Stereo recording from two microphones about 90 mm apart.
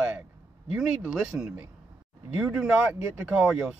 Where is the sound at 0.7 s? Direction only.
10° right (ahead or behind).